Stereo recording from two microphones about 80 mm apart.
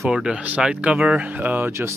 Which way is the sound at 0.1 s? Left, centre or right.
Centre.